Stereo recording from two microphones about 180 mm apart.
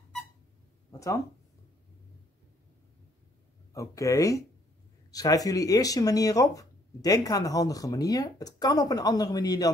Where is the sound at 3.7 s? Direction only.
15° left (ahead or behind).